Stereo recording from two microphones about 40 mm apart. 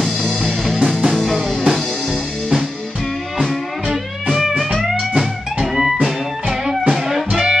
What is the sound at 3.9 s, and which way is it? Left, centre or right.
Music, centre.